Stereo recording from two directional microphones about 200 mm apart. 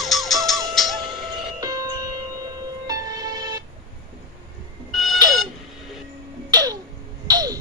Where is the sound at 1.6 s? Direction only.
15° right (ahead or behind).